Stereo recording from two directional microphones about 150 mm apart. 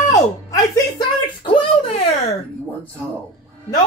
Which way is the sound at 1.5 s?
40° left (ahead or behind).